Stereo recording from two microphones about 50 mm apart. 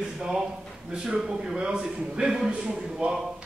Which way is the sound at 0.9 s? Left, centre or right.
Centre.